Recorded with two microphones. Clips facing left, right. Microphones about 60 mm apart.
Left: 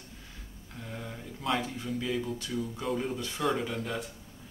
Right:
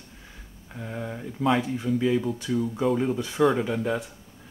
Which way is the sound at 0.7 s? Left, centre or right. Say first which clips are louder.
Right 7 dB; right.